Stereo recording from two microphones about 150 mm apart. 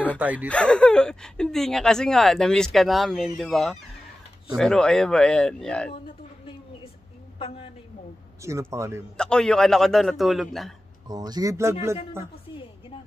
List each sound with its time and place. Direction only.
0.2 s speech: 10° right (ahead or behind)
0.5 s speech: 5° left (ahead or behind)
7.3 s a woman's voice: 40° left (ahead or behind)
8.4 s speech: 20° right (ahead or behind)
9.1 s speech: 5° left (ahead or behind)
11.1 s speech: 25° right (ahead or behind)